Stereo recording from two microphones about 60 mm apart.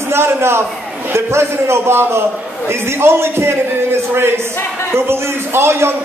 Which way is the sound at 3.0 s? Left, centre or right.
Right.